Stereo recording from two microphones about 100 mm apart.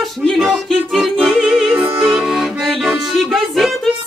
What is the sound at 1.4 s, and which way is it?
Music, 15° right (ahead or behind).